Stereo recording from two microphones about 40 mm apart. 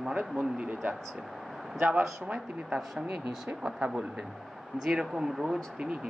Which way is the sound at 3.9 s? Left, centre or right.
Centre.